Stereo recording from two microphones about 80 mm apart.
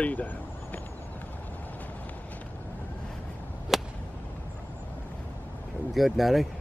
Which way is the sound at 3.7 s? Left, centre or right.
Centre.